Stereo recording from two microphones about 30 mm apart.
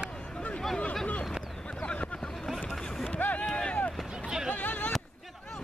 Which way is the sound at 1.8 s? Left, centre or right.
Left.